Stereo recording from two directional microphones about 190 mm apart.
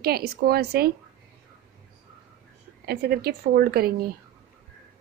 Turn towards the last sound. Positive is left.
turn(degrees=-55)  # may be behind; listen again after turning